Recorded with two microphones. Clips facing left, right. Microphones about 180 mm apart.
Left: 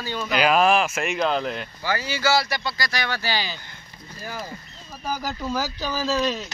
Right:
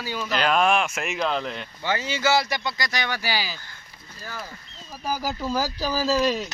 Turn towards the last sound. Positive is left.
turn(degrees=-10)  # may be behind; listen again after turning